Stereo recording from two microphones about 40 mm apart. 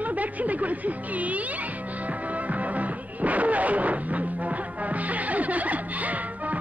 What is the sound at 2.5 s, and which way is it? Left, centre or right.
Music, right.